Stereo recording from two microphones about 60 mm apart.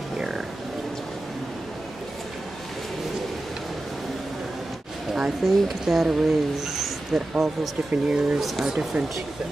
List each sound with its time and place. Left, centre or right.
5.1 s speech: centre
7.9 s speech: right
8.4 s speech: centre